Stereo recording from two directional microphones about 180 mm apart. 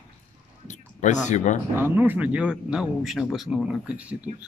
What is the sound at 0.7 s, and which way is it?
Speech, 40° left (ahead or behind).